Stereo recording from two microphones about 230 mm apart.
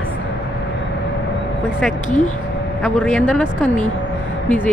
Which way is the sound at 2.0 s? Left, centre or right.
Left.